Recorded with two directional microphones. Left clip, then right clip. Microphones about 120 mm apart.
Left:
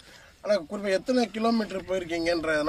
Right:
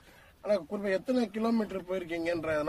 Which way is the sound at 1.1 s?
30° right (ahead or behind).